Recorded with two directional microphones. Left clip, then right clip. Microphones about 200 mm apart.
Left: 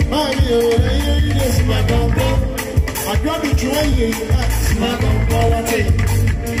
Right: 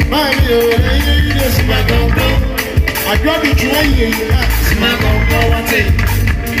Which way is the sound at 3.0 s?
15° right (ahead or behind).